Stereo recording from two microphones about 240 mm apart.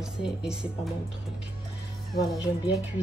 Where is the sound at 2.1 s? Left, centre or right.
Centre.